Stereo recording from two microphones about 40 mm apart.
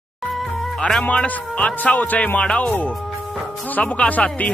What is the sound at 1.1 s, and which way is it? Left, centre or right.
Speech, left.